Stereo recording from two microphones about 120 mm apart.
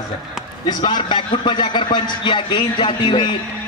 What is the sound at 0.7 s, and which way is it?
A man's voice, 35° left (ahead or behind).